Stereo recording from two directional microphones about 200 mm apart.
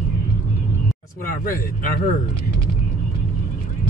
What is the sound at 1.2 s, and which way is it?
Speech, 45° left (ahead or behind).